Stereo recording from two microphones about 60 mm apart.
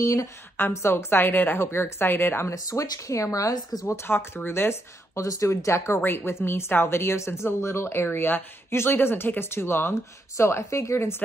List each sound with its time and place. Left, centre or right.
0.0 s speech: left
0.6 s a woman's voice: left
2.5 s speech: left
3.8 s a woman's voice: left
5.9 s a woman's voice: left
10.3 s speech: left